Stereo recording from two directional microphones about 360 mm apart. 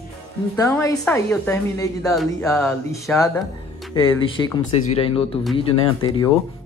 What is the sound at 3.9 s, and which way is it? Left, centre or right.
Speech, left.